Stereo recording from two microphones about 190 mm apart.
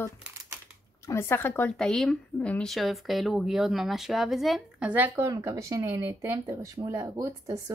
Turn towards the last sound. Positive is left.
turn(degrees=-15)  # may be behind; listen again after turning